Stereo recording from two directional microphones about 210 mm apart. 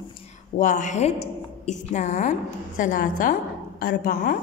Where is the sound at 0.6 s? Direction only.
35° left (ahead or behind).